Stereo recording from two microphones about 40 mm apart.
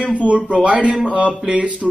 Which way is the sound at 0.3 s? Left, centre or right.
Right.